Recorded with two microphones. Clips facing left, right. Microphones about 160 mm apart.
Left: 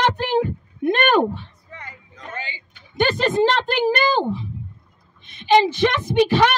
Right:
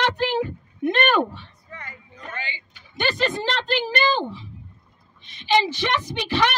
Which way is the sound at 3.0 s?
45° left (ahead or behind).